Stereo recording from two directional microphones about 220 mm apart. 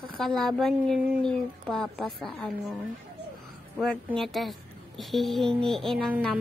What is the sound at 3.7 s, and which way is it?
A woman's voice, centre (ahead or behind).